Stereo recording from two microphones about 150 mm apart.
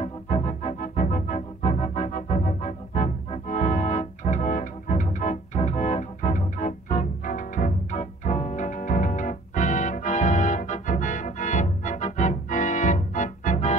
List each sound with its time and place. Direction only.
0.0 s music: 50° left (ahead or behind)